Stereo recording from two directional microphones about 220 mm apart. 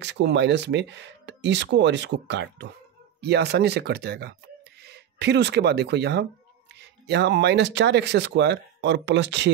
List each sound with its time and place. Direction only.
0.0 s speech: 50° right (ahead or behind)